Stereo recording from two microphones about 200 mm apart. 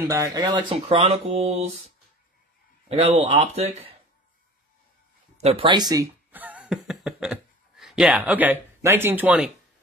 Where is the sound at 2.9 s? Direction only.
30° right (ahead or behind).